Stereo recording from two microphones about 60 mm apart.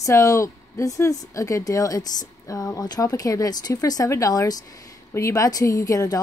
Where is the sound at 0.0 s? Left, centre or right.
Left.